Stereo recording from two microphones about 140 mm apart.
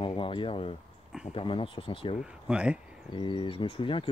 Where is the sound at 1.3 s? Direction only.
40° left (ahead or behind).